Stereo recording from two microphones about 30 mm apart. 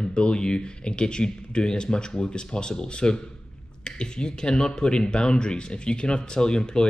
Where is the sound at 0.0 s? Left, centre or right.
Left.